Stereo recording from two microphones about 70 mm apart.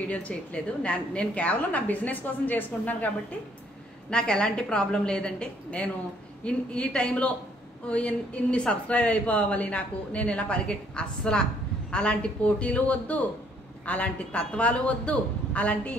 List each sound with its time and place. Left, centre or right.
0.1 s a woman's voice: centre
4.1 s a woman's voice: centre